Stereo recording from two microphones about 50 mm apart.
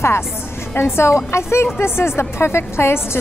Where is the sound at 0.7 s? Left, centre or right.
Left.